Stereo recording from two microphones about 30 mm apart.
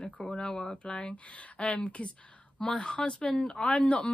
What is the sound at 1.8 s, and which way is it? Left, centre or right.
Speech, left.